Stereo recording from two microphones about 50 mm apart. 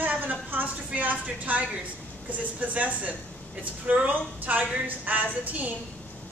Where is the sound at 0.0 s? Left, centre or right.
Right.